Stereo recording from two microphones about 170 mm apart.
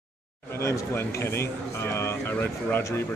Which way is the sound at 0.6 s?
15° left (ahead or behind).